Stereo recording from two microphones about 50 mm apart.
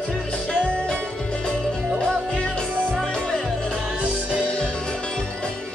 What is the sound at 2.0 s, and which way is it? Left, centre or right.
Music, centre.